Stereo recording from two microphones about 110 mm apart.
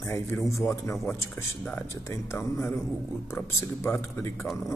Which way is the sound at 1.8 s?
25° left (ahead or behind).